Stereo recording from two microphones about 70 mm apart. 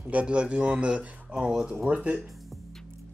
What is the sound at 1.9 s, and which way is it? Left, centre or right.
Speech, right.